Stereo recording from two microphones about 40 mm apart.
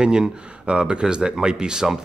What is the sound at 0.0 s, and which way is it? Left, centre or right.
Speech, right.